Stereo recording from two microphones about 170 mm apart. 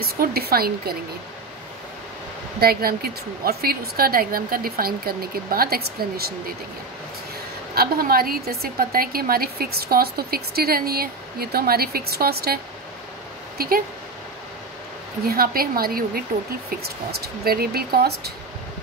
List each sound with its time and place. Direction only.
0.0 s a woman's voice: 65° right (ahead or behind)
2.6 s a woman's voice: 65° right (ahead or behind)
7.7 s a woman's voice: 60° right (ahead or behind)
13.6 s speech: 60° right (ahead or behind)
15.2 s a woman's voice: 60° right (ahead or behind)